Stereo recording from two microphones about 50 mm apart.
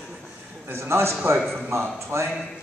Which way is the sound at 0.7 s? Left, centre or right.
Right.